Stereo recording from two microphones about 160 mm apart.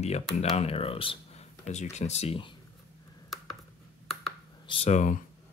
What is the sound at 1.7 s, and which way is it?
Speech, 45° left (ahead or behind).